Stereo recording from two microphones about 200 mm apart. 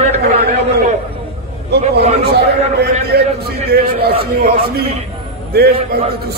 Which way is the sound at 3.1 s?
55° right (ahead or behind).